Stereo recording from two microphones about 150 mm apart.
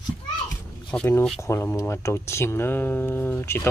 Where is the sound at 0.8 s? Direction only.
10° left (ahead or behind).